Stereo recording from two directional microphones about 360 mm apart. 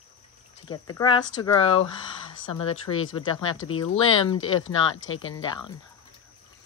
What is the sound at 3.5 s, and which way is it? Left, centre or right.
Speech, left.